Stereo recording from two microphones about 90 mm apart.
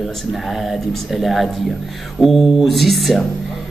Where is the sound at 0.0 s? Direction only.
Centre (ahead or behind).